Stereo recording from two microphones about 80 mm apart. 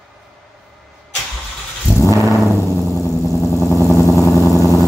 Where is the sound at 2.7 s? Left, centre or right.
Left.